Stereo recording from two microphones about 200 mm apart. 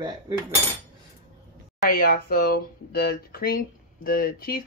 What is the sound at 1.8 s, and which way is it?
Speech, 45° left (ahead or behind).